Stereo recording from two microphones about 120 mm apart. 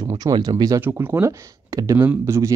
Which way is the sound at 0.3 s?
35° right (ahead or behind).